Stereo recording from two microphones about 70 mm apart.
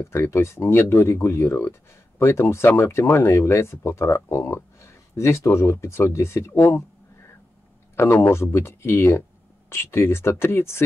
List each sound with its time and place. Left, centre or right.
0.0 s speech: left
7.9 s speech: left